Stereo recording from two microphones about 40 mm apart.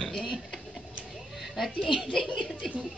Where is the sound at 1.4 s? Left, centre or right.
Centre.